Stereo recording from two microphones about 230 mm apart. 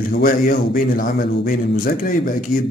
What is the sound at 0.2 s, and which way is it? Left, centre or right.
Speech, left.